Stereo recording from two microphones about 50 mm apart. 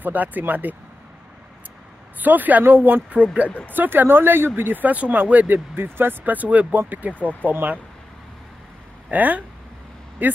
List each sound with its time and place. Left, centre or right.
0.0 s speech: right
2.1 s speech: right
3.4 s speech: left
3.7 s speech: right
5.8 s speech: right
9.1 s speech: right